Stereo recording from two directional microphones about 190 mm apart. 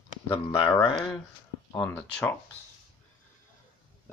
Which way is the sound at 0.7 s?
5° left (ahead or behind).